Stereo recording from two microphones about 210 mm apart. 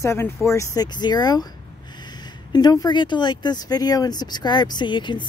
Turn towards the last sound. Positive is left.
turn(degrees=20)  # may be behind; listen again after turning